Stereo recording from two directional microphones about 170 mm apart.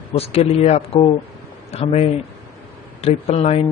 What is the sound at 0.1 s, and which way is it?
Speech, 35° left (ahead or behind).